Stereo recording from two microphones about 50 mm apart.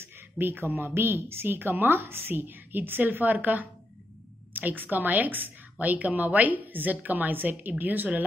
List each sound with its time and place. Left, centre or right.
0.0 s a woman's voice: right